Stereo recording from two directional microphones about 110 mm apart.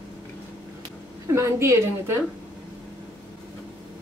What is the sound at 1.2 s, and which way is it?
Speech, 30° right (ahead or behind).